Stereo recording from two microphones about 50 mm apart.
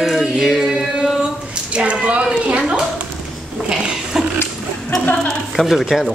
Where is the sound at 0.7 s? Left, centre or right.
Centre.